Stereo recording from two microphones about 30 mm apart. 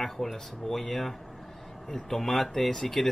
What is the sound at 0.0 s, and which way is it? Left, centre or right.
Speech, centre.